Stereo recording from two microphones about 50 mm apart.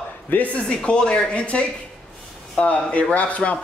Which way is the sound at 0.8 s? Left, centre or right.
Centre.